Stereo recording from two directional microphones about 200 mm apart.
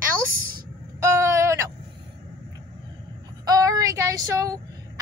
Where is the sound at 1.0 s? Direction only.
15° right (ahead or behind).